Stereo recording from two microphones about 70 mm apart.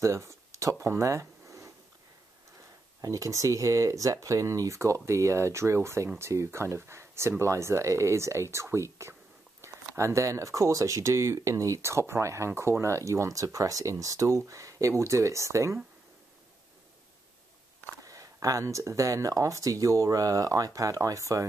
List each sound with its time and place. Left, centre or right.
0.0 s a sound: right
3.0 s speech: right
18.0 s speech: right